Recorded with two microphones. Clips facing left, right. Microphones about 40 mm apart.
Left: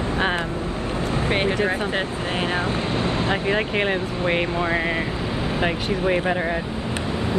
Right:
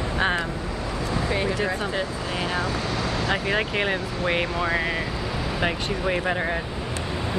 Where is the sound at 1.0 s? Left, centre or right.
Left.